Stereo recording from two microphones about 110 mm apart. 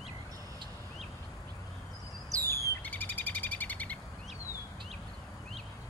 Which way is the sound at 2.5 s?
20° left (ahead or behind).